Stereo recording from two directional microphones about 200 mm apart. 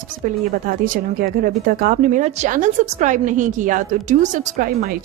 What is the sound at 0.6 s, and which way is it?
A woman's voice, 40° right (ahead or behind).